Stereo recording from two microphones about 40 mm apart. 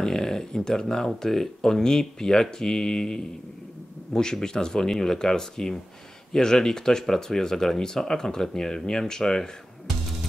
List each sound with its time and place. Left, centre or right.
0.0 s speech: centre